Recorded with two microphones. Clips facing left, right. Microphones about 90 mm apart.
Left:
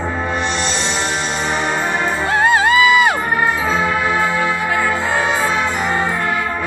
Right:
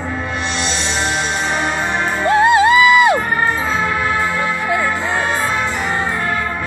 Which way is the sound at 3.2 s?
5° left (ahead or behind).